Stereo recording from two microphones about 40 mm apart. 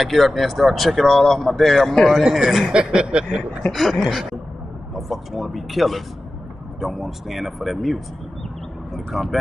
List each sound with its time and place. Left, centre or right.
0.0 s speech: centre
2.7 s speech: right
3.7 s speech: centre